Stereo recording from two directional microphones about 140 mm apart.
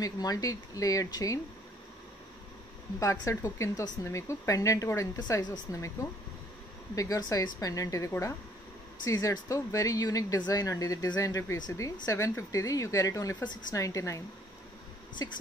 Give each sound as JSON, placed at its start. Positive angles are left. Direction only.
{"t": 0.0, "sound": "a woman's voice", "side_deg": 25}
{"t": 3.0, "sound": "a woman's voice", "side_deg": 20}
{"t": 7.0, "sound": "a woman's voice", "side_deg": 25}